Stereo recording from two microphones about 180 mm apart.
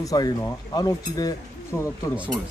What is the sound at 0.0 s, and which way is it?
Speech, 20° left (ahead or behind).